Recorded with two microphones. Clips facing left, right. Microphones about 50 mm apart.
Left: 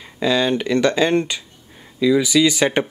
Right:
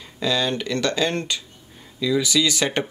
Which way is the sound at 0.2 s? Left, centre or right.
Centre.